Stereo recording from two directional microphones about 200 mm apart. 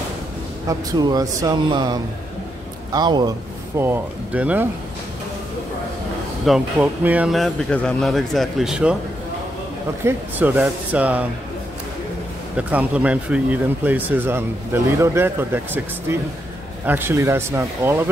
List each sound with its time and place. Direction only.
0.7 s speech: 20° right (ahead or behind)
6.4 s speech: 5° right (ahead or behind)
10.0 s speech: 10° right (ahead or behind)
12.5 s speech: 5° right (ahead or behind)